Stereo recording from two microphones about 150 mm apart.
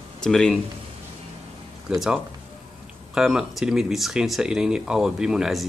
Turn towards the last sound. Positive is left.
turn(degrees=-5)  # may be behind; listen again after turning